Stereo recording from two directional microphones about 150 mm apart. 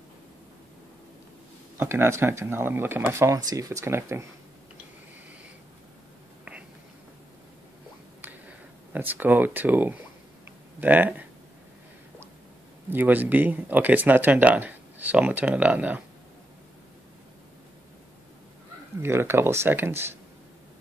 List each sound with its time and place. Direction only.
1.8 s speech: 15° right (ahead or behind)
8.9 s speech: 10° right (ahead or behind)
12.9 s speech: 10° right (ahead or behind)
19.0 s speech: 15° right (ahead or behind)